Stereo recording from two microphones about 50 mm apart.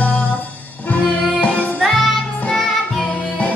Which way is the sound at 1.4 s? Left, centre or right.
Left.